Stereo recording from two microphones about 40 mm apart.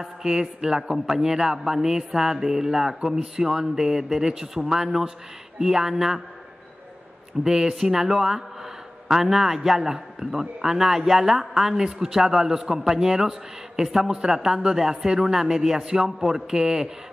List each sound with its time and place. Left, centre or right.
0.0 s a man's voice: centre
7.4 s a man's voice: centre